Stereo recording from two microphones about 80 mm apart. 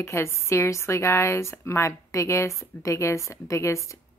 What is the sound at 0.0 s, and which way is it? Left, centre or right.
Speech, left.